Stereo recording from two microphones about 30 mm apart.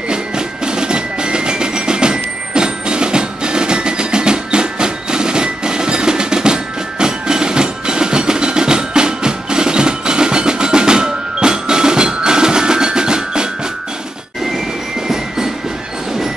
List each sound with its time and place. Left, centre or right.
0.7 s music: right
15.0 s music: centre